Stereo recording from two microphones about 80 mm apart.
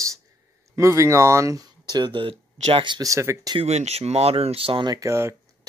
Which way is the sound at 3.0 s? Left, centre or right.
Right.